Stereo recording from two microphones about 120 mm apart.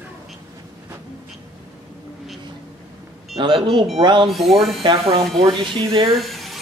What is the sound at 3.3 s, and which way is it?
Speech, 40° right (ahead or behind).